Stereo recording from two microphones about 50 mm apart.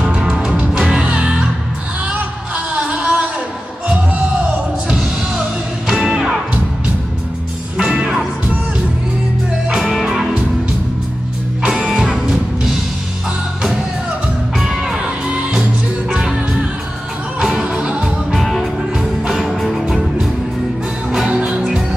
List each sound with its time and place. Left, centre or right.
0.0 s music: centre
2.0 s music: right
6.0 s music: centre
7.7 s music: centre
9.8 s music: centre
11.6 s music: centre
14.6 s music: centre
15.0 s music: right
17.4 s music: centre
17.6 s music: right
18.3 s music: centre
21.5 s music: centre